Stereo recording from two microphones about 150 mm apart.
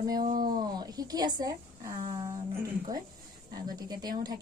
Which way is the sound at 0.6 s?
25° right (ahead or behind).